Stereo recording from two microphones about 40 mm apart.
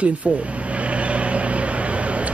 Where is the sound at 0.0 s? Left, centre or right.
Right.